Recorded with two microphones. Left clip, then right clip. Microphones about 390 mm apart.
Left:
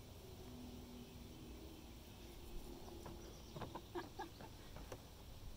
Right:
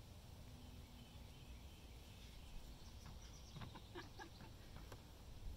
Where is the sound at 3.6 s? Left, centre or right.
Centre.